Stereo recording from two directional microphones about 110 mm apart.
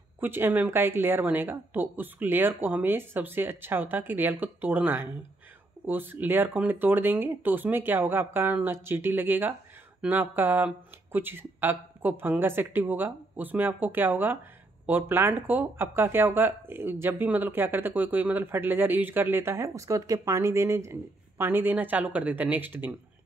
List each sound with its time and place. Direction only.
0.2 s speech: 20° right (ahead or behind)